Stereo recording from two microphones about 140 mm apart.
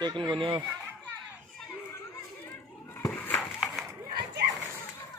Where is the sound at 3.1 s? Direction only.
10° left (ahead or behind).